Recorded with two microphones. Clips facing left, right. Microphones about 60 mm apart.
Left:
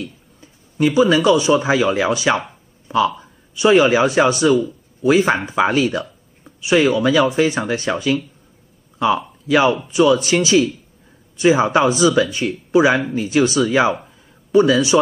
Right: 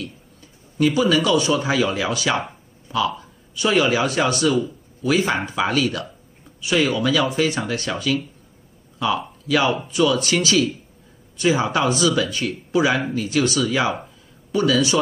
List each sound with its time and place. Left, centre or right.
0.7 s speech: left
9.5 s speech: left